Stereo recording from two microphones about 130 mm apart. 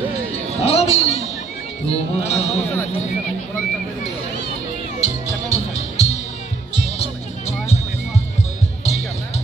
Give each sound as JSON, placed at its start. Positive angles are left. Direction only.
{"t": 0.6, "sound": "a sound", "side_deg": 55}
{"t": 1.9, "sound": "speech", "side_deg": 50}
{"t": 5.0, "sound": "music", "side_deg": 55}